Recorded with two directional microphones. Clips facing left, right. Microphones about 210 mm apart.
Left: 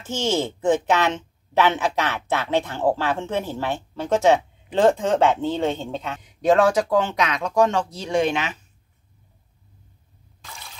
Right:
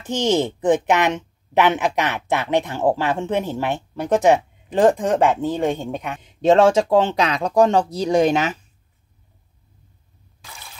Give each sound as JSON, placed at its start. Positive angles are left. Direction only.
{"t": 0.0, "sound": "a woman's voice", "side_deg": -15}
{"t": 6.2, "sound": "speech", "side_deg": -25}